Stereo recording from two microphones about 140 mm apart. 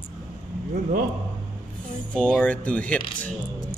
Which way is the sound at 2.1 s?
10° left (ahead or behind).